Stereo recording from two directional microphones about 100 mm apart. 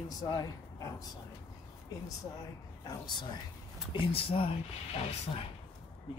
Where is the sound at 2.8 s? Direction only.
45° left (ahead or behind).